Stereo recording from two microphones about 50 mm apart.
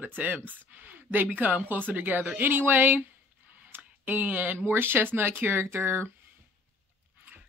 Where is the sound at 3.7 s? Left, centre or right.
Right.